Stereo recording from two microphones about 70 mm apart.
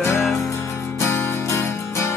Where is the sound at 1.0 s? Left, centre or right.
Left.